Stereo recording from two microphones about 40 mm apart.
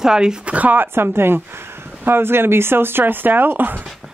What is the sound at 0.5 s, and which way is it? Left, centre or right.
Speech, right.